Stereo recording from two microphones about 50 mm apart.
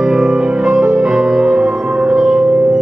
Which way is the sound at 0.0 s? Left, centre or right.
Centre.